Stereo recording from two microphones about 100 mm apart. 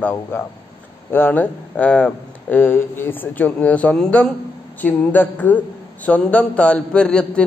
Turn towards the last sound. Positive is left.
turn(degrees=10)  # may be behind; listen again after turning